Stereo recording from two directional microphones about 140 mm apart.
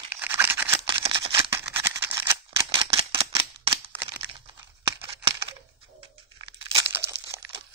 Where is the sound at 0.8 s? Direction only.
40° right (ahead or behind).